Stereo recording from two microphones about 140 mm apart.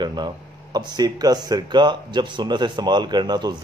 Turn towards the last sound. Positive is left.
turn(degrees=-30)  # may be behind; listen again after turning